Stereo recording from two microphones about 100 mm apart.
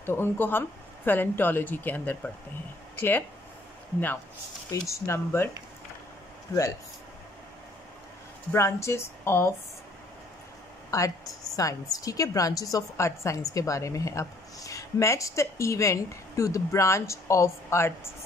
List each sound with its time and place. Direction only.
0.0 s speech: 25° left (ahead or behind)
4.6 s speech: 30° left (ahead or behind)
6.5 s a woman's voice: 35° left (ahead or behind)
8.5 s speech: 30° left (ahead or behind)
10.9 s a woman's voice: 35° left (ahead or behind)